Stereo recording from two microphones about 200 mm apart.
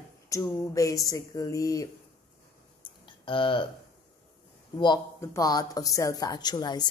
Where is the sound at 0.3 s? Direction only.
15° left (ahead or behind).